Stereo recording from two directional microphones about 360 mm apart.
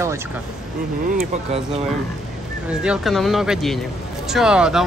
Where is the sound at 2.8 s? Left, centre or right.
Centre.